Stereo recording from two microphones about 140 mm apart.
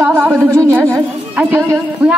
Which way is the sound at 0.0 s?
15° right (ahead or behind).